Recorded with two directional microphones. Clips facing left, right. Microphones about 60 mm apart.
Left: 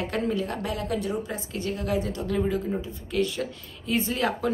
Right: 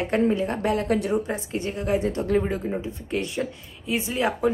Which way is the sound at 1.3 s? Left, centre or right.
Right.